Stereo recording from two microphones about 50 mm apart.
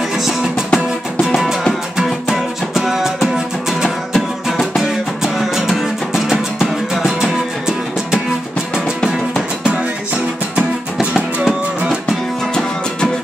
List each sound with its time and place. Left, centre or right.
0.2 s music: centre
2.0 s music: centre
4.1 s music: centre
11.4 s music: centre